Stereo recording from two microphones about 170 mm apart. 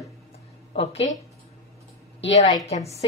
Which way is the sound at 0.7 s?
35° left (ahead or behind).